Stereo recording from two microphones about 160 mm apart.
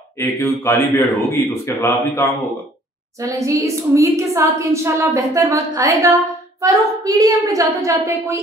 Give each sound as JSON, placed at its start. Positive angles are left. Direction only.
{"t": 0.2, "sound": "a man's voice", "side_deg": 15}
{"t": 3.2, "sound": "a woman's voice", "side_deg": -20}